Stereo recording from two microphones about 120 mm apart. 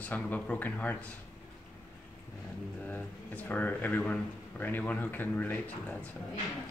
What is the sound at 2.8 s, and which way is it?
Speech, 15° left (ahead or behind).